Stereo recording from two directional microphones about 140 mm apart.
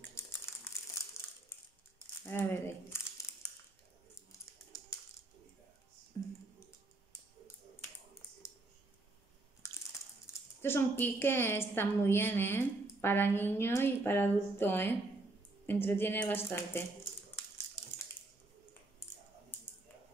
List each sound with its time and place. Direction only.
0.2 s typing: 20° left (ahead or behind)
2.2 s crumpling: 15° left (ahead or behind)
4.7 s a sound: 25° left (ahead or behind)
10.6 s a woman's voice: 15° left (ahead or behind)